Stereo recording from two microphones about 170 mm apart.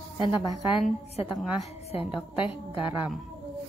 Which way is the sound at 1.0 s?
35° left (ahead or behind).